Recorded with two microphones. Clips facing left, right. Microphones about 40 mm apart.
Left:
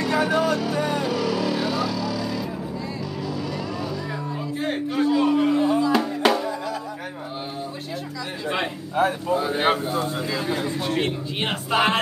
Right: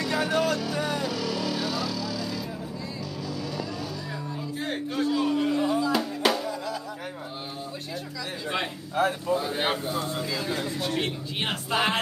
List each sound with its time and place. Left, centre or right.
0.0 s music: centre
4.6 s a sound: centre
5.9 s music: centre
8.5 s a man's voice: centre